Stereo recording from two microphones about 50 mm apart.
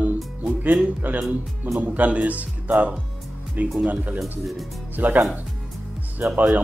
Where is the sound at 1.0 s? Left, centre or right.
Right.